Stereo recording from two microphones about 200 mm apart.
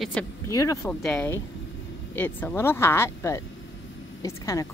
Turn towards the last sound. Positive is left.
turn(degrees=15)  # may be behind; listen again after turning